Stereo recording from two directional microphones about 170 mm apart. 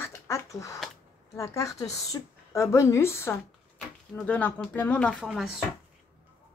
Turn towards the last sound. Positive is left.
turn(degrees=0)  # may be behind; listen again after turning